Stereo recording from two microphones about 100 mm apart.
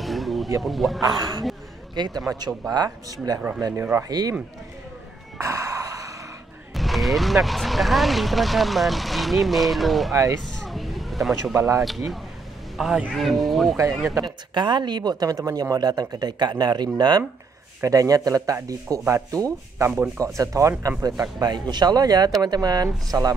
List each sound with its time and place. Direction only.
0.0 s a sound: centre (ahead or behind)
0.6 s speech: centre (ahead or behind)
1.0 s sanding: 40° right (ahead or behind)
2.0 s speech: 40° right (ahead or behind)
2.7 s sanding: 40° right (ahead or behind)
3.3 s speech: 15° right (ahead or behind)
4.1 s speech: 40° right (ahead or behind)
5.4 s sigh: 35° right (ahead or behind)
6.7 s speech: centre (ahead or behind)
10.4 s a sound: centre (ahead or behind)
11.8 s a man's voice: centre (ahead or behind)
14.2 s speech: 50° right (ahead or behind)
17.8 s sanding: 35° right (ahead or behind)